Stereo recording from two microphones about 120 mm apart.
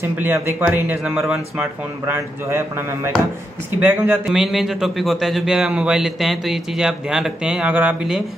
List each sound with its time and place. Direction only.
0.0 s speech: 15° right (ahead or behind)
2.0 s speech: 20° right (ahead or behind)
4.3 s a man's voice: 5° right (ahead or behind)